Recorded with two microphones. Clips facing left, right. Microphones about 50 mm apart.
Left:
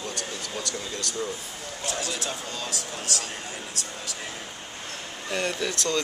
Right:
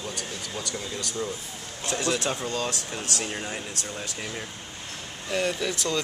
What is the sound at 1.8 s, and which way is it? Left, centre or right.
Speech, right.